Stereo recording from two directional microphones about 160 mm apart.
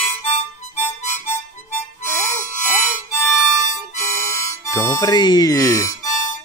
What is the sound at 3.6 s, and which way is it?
Harmonica, 50° left (ahead or behind).